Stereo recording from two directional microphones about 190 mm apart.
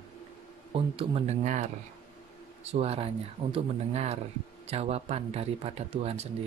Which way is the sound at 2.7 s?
30° right (ahead or behind).